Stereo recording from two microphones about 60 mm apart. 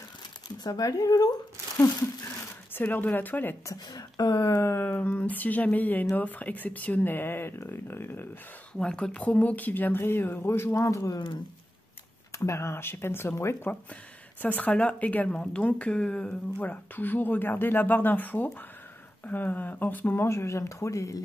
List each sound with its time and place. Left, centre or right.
0.7 s speech: left
2.7 s speech: left
3.6 s speech: left
4.4 s speech: left
8.7 s speech: centre
9.2 s speech: left
10.8 s speech: left
12.3 s speech: left
14.4 s speech: left
16.5 s speech: left
20.2 s speech: left